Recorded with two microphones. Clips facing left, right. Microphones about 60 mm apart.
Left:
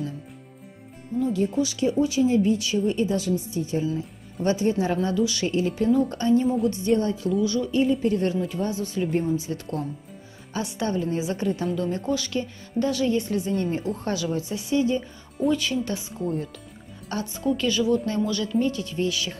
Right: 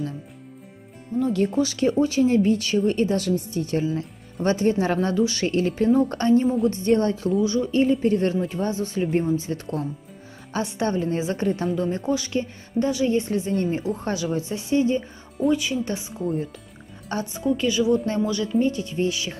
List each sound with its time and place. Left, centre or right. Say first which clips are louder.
1.2 s speech: right 2 dB; right
1.6 s speech: right 2 dB; right
4.4 s speech: right 2 dB; right
7.2 s speech: right 2 dB; right
7.7 s a woman's voice: right 2 dB; right
11.7 s a woman's voice: right 2 dB; right
15.5 s a woman's voice: right 1 dB; centre
17.1 s a woman's voice: right 2 dB; right
17.6 s a woman's voice: right 2 dB; centre